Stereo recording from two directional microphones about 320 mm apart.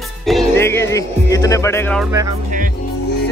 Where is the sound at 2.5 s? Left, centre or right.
Right.